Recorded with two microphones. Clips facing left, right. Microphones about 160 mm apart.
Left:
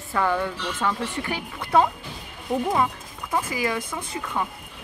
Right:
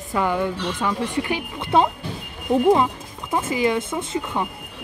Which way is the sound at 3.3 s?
25° right (ahead or behind).